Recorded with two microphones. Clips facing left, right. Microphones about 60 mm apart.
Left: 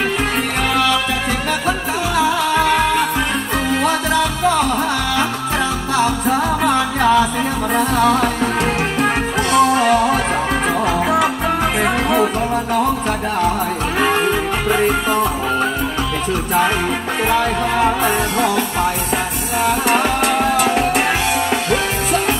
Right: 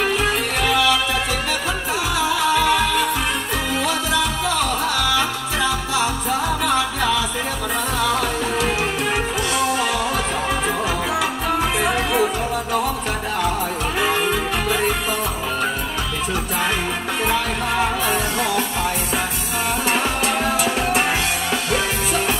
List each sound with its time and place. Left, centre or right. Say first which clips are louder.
3.8 s music: left 4 dB; left
6.6 s music: left 4 dB; left
13.9 s music: left 4 dB; left
20.5 s music: left 4 dB; left